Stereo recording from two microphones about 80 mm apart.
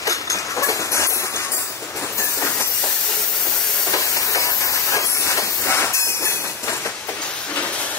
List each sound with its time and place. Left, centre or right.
0.0 s train: left
3.9 s steam: left
4.9 s train: left